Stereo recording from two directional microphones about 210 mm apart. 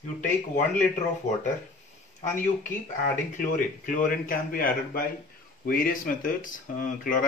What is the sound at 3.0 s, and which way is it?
Speech, 40° left (ahead or behind).